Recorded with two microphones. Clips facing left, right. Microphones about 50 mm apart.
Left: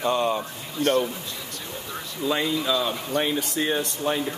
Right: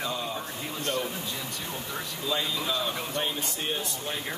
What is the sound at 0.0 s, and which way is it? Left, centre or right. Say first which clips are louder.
Speech: left 9 dB; left.